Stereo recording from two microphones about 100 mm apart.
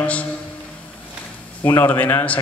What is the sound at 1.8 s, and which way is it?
Speech, 20° left (ahead or behind).